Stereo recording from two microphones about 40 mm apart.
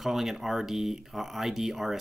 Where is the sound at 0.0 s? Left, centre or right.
Centre.